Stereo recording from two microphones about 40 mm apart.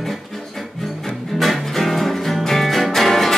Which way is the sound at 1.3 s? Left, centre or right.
Centre.